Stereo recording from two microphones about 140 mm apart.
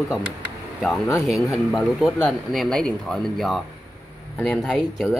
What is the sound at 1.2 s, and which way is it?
Speech, centre (ahead or behind).